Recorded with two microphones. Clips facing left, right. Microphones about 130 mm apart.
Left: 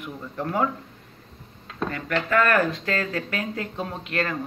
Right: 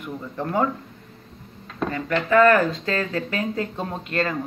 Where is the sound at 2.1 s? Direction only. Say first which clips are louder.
Right 5 dB; 20° right (ahead or behind).